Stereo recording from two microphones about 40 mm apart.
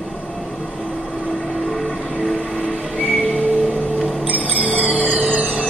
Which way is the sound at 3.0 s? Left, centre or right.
Left.